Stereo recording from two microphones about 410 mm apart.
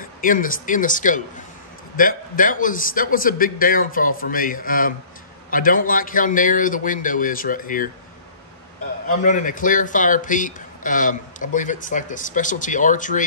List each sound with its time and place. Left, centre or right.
0.0 s a man's voice: centre
9.0 s a man's voice: centre